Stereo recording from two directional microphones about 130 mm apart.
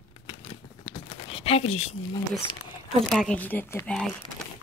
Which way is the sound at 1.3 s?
50° left (ahead or behind).